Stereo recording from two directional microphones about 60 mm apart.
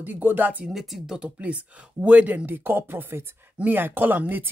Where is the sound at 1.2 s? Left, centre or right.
Right.